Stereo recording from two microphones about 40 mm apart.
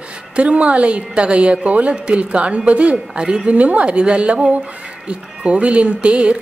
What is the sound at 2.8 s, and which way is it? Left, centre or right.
A woman's voice, right.